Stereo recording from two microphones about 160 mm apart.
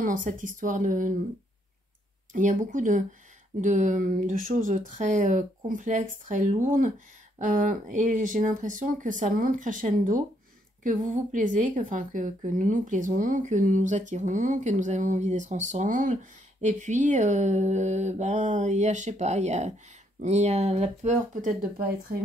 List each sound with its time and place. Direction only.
0.0 s speech: 55° right (ahead or behind)
2.3 s a woman's voice: 55° right (ahead or behind)